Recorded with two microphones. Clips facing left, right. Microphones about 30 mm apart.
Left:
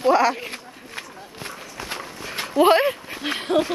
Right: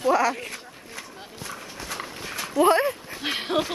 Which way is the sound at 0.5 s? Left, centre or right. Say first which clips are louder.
Left 2 dB; left.